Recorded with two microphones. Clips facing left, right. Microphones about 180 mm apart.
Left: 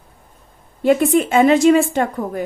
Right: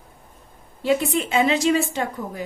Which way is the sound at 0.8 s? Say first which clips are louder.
Left 7 dB; 55° left (ahead or behind).